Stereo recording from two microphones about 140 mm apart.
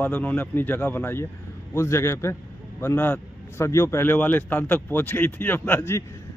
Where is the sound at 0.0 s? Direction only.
10° left (ahead or behind).